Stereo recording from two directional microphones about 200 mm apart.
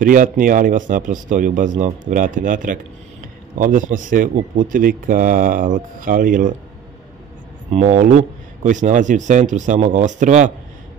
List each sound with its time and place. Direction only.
0.0 s speech: 40° right (ahead or behind)
7.7 s speech: 35° right (ahead or behind)